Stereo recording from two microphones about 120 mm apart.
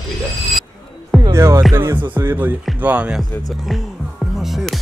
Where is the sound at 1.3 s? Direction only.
25° right (ahead or behind).